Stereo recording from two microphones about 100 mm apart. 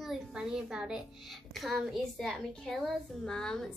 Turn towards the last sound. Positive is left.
turn(degrees=5)  # may be behind; listen again after turning